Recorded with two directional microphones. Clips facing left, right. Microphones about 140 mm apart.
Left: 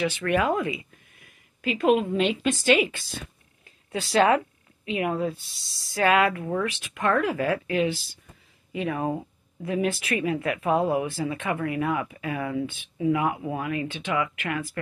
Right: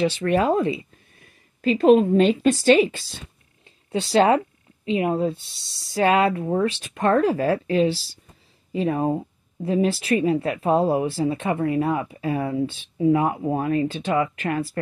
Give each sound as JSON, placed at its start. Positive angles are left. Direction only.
{"t": 0.0, "sound": "speech", "side_deg": -30}